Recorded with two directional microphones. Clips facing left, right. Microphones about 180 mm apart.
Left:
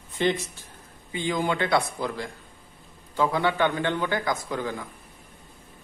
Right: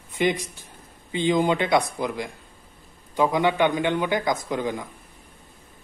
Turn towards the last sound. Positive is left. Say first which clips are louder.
# right 3 dB
turn(degrees=-20)  # may be behind; listen again after turning